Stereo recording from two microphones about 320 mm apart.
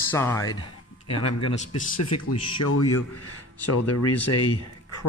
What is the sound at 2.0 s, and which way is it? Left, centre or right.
Speech, left.